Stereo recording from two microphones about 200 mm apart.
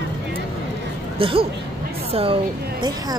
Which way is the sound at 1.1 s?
25° right (ahead or behind).